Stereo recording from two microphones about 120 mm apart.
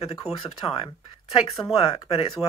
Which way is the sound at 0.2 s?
60° left (ahead or behind).